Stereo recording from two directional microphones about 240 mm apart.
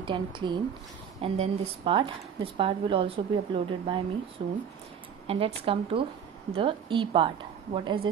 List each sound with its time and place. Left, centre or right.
0.0 s speech: centre